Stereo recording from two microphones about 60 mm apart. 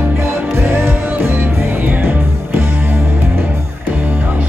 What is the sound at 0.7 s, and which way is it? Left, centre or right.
Music, right.